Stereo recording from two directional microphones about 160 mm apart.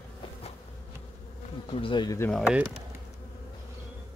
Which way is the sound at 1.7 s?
30° left (ahead or behind).